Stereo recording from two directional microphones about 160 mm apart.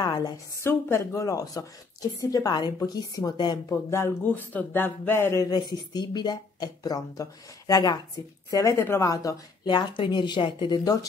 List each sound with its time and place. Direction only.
0.0 s speech: 25° left (ahead or behind)
3.9 s speech: 15° left (ahead or behind)